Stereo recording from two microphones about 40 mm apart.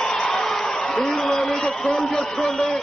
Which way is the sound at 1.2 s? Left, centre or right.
Centre.